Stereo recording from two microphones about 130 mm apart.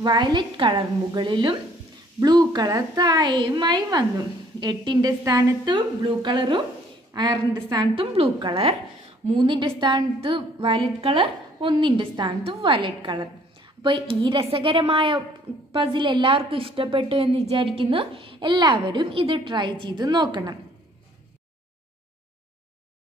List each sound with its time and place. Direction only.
0.0 s a woman's voice: 35° right (ahead or behind)
7.7 s a woman's voice: 40° right (ahead or behind)